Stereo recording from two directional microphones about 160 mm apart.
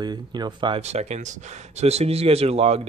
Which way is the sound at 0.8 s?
45° right (ahead or behind).